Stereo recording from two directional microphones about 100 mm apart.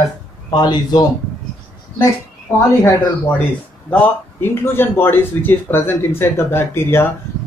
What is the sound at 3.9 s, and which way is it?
A man's voice, 20° left (ahead or behind).